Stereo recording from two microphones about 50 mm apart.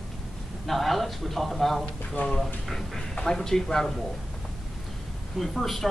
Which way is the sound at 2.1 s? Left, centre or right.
Left.